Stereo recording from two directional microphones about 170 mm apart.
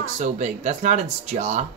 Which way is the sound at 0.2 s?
45° right (ahead or behind).